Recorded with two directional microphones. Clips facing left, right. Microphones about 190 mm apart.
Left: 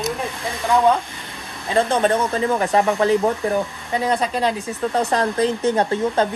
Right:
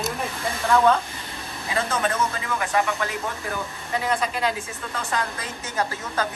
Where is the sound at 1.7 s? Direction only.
30° left (ahead or behind).